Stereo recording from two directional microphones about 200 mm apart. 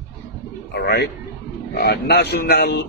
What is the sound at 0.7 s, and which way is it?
Speech, 55° left (ahead or behind).